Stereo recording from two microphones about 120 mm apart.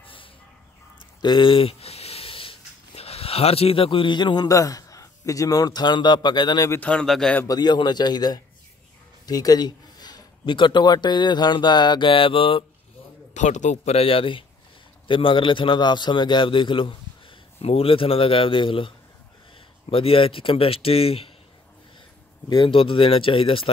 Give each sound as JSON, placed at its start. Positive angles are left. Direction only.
{"t": 0.0, "sound": "fowl", "side_deg": 45}
{"t": 1.2, "sound": "a sound", "side_deg": 40}
{"t": 3.0, "sound": "a man's voice", "side_deg": 55}
{"t": 6.7, "sound": "speech", "side_deg": 10}
{"t": 7.4, "sound": "a man's voice", "side_deg": 35}
{"t": 13.3, "sound": "a man's voice", "side_deg": 85}
{"t": 13.9, "sound": "a man's voice", "side_deg": 50}
{"t": 22.5, "sound": "a man's voice", "side_deg": 45}